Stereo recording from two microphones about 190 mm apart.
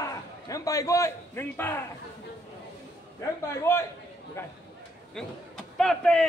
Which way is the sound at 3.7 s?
15° left (ahead or behind).